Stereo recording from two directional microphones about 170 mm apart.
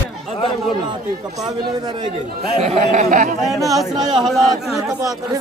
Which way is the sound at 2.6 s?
40° right (ahead or behind).